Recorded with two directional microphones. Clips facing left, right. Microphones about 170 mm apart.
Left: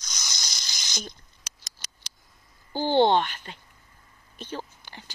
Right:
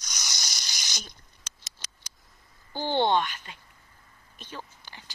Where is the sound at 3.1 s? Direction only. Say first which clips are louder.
Left 2 dB; 50° left (ahead or behind).